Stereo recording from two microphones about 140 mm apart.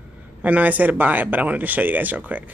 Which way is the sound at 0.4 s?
10° right (ahead or behind).